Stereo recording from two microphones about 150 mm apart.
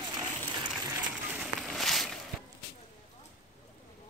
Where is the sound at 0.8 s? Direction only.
15° right (ahead or behind).